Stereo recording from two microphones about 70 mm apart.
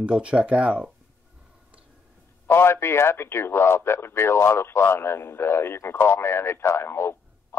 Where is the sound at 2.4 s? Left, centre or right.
Left.